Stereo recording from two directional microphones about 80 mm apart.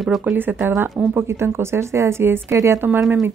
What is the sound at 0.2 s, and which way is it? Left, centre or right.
A woman's voice, right.